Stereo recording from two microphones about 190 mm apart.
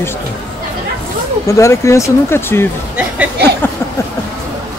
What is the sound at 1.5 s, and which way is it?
Speech, 15° left (ahead or behind).